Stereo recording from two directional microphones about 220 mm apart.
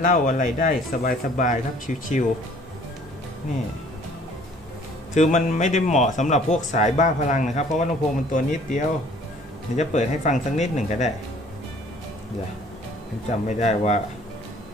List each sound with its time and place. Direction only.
0.0 s speech: 35° left (ahead or behind)
5.1 s speech: 35° left (ahead or behind)
13.5 s speech: 30° left (ahead or behind)